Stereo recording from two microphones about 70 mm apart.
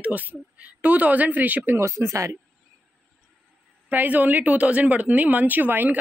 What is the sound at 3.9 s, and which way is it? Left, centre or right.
Speech, right.